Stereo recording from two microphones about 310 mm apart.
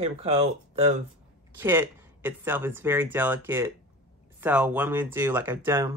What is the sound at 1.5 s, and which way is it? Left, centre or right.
Speech, centre.